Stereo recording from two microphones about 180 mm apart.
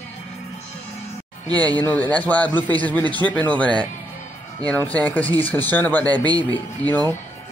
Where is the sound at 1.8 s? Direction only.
10° left (ahead or behind).